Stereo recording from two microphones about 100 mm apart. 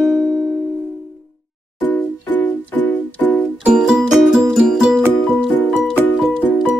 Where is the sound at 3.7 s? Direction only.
5° right (ahead or behind).